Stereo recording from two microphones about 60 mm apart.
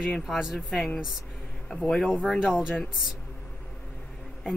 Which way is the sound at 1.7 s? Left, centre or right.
Centre.